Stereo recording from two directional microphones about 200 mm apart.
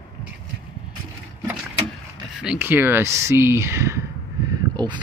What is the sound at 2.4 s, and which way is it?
Speech, 5° right (ahead or behind).